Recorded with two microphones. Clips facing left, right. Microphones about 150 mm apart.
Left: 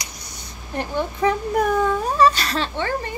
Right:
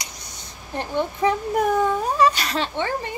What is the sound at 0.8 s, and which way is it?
A woman's voice, 25° right (ahead or behind).